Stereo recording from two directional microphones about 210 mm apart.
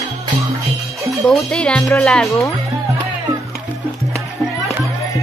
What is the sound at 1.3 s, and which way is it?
Speech, 5° left (ahead or behind).